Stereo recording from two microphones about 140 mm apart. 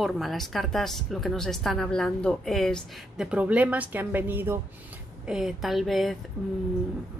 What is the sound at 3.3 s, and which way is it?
Speech, 10° right (ahead or behind).